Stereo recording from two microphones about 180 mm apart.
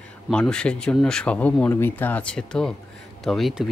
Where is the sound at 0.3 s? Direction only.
5° left (ahead or behind).